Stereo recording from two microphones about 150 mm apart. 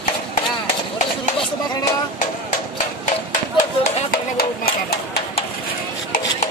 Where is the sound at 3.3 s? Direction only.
60° left (ahead or behind); by 5.2 s 90° left.